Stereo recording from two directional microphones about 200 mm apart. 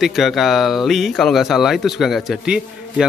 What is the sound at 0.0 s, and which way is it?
Speech, centre (ahead or behind).